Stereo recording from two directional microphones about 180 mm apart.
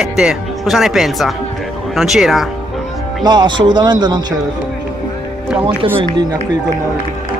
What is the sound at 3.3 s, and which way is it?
A man's voice, 25° right (ahead or behind).